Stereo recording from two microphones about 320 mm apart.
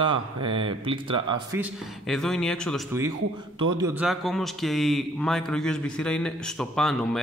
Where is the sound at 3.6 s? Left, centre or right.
Centre.